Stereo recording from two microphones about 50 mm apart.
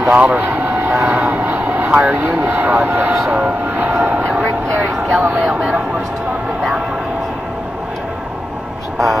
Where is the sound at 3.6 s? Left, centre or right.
Right.